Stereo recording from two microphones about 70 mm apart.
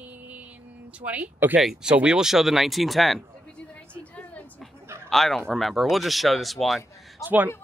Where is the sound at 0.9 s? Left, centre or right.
Centre.